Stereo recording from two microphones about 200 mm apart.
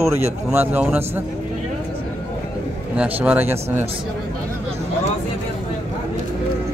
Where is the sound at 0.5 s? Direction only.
10° right (ahead or behind).